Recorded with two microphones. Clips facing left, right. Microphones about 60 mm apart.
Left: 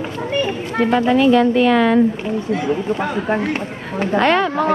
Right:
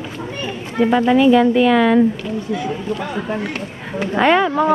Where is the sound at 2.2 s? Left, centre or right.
Left.